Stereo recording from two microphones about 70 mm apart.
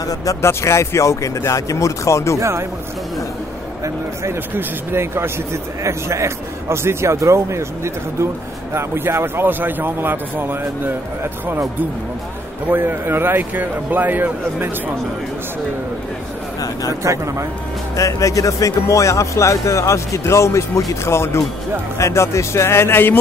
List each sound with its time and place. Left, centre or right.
0.4 s speech: left
3.8 s speech: right
12.7 s a man's voice: right
17.0 s speech: right
17.9 s speech: left